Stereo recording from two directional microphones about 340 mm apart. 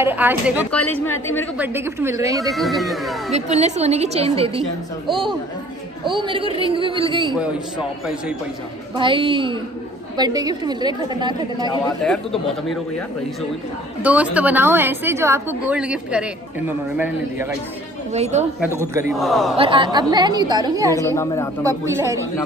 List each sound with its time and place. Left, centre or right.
0.0 s a woman's voice: centre
1.6 s a woman's voice: centre
3.3 s a woman's voice: centre
6.0 s a woman's voice: centre
8.9 s a woman's voice: centre
12.0 s a woman's voice: centre
14.0 s a woman's voice: centre
18.1 s a woman's voice: centre
18.6 s a woman's voice: centre
19.5 s a woman's voice: centre
20.9 s a woman's voice: centre
21.6 s a woman's voice: centre